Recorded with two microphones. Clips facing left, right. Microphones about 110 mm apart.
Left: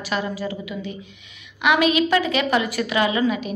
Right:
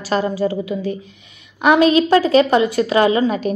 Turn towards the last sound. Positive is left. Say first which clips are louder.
# right 5 dB
turn(degrees=-35)  # may be behind; listen again after turning